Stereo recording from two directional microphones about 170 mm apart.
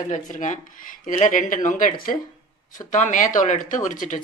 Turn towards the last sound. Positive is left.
turn(degrees=50)  # may be behind; listen again after turning